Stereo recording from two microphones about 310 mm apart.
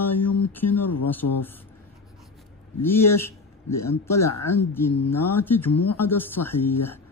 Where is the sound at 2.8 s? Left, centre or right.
Centre.